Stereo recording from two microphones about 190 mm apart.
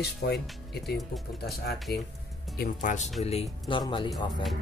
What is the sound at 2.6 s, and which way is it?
Speech, 45° left (ahead or behind).